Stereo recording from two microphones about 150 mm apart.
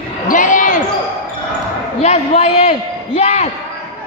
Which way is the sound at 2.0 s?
45° left (ahead or behind).